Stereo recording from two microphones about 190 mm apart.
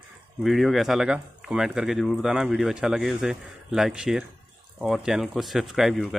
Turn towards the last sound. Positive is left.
turn(degrees=0)  # may be behind; listen again after turning